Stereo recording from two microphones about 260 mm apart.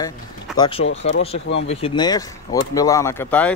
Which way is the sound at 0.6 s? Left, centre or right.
Centre.